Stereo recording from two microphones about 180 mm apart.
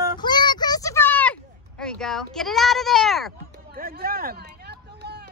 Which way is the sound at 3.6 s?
55° right (ahead or behind).